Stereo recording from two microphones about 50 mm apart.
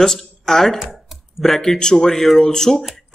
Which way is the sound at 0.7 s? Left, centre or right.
Centre.